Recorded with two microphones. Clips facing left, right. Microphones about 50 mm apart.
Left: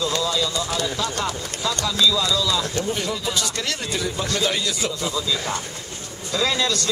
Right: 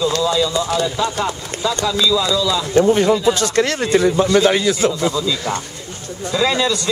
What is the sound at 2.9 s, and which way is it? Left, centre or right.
A man's voice, right.